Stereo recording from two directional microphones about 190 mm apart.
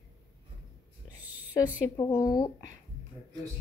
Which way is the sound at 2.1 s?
20° left (ahead or behind).